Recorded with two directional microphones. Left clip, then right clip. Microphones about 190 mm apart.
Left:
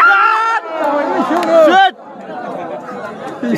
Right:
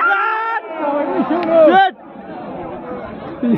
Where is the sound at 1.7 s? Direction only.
5° left (ahead or behind).